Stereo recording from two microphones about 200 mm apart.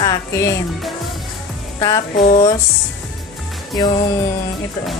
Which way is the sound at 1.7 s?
20° left (ahead or behind).